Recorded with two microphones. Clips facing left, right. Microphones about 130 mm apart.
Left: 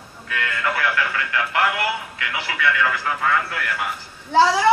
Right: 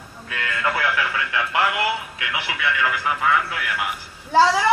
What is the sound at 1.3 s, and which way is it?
Speech, 20° right (ahead or behind).